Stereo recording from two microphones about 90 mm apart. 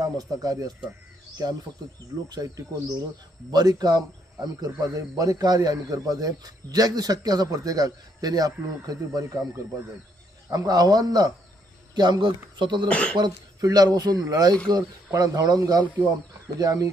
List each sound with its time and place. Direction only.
0.0 s a man's voice: 45° right (ahead or behind)
2.2 s a man's voice: 45° right (ahead or behind)
4.6 s a man's voice: 35° right (ahead or behind)
10.5 s a man's voice: 45° right (ahead or behind); by 12.8 s 60° right (ahead or behind)
12.8 s speech: 10° left (ahead or behind)
13.2 s a man's voice: 45° right (ahead or behind)